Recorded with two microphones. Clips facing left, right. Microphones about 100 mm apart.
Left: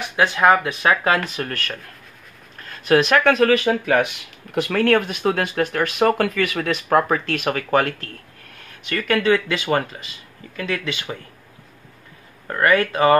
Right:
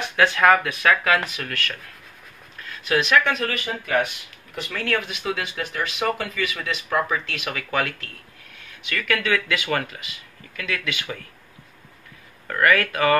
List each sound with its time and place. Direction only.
0.1 s speech: 20° left (ahead or behind); by 3.5 s 50° left (ahead or behind)
3.5 s speech: 90° left
4.6 s speech: 55° left (ahead or behind); by 11.1 s 30° left (ahead or behind)
12.4 s speech: 25° left (ahead or behind)